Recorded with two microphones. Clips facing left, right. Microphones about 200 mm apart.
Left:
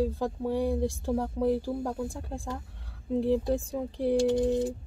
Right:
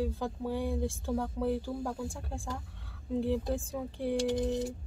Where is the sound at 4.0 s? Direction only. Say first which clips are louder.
Left 6 dB; 30° left (ahead or behind).